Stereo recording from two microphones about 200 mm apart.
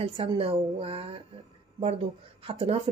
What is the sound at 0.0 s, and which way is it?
Speech, 30° right (ahead or behind).